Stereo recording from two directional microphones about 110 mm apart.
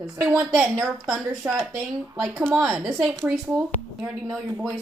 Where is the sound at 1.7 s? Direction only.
30° right (ahead or behind).